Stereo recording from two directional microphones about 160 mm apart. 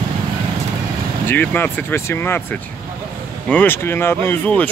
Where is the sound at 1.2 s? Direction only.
10° left (ahead or behind).